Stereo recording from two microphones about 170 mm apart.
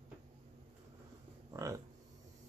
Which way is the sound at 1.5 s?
20° right (ahead or behind).